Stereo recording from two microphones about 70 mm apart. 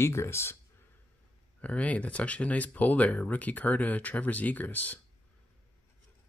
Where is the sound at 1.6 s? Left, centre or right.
Left.